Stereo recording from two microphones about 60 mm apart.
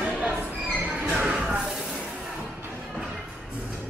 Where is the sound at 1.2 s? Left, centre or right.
Centre.